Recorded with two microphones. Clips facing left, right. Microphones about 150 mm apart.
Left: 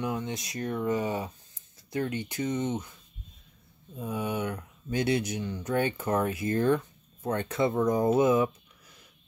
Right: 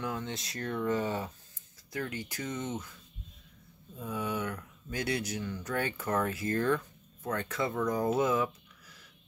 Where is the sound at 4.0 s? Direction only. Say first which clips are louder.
Left 3 dB; 20° left (ahead or behind).